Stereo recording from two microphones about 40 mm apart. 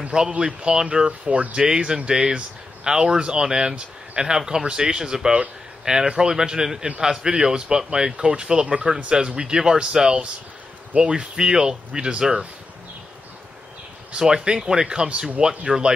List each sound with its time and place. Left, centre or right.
0.3 s speech: right
14.1 s speech: right